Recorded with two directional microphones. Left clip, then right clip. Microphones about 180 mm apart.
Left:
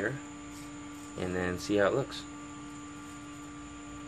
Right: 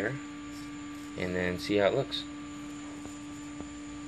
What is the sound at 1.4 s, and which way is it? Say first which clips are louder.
Speech: right 1 dB; 10° left (ahead or behind).